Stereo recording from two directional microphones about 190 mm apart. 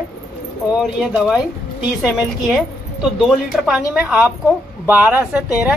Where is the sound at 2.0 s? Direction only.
5° right (ahead or behind).